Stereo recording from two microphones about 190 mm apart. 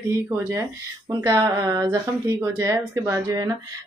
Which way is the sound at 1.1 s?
15° right (ahead or behind).